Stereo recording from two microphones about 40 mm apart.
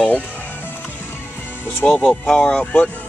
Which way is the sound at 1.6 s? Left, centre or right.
Left.